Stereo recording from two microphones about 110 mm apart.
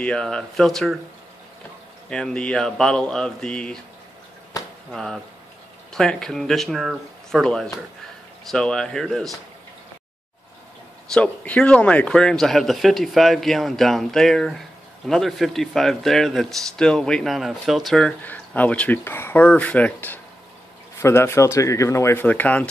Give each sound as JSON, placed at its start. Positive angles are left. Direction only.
{"t": 0.0, "sound": "speech", "side_deg": 5}
{"t": 2.0, "sound": "speech", "side_deg": 5}
{"t": 4.6, "sound": "a sound", "side_deg": 35}
{"t": 4.9, "sound": "speech", "side_deg": 0}
{"t": 11.1, "sound": "speech", "side_deg": 10}
{"t": 18.2, "sound": "speech", "side_deg": 15}